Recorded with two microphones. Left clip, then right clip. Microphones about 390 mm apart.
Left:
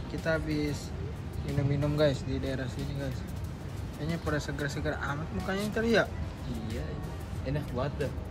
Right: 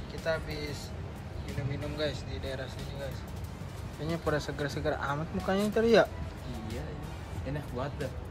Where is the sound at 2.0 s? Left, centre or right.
Centre.